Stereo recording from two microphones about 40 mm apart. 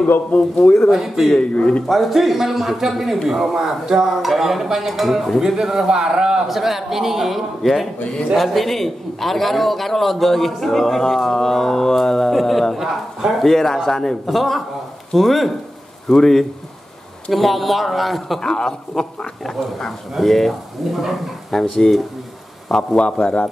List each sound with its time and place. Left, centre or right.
0.0 s a man's voice: left
0.9 s a man's voice: centre
1.4 s speech: left
1.9 s a man's voice: centre
6.4 s a man's voice: centre
13.5 s a man's voice: centre
16.1 s speech: centre
17.3 s a man's voice: centre
18.4 s speech: centre
20.2 s a man's voice: centre